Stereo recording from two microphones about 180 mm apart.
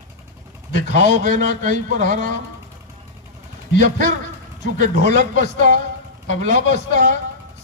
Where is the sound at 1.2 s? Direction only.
50° right (ahead or behind).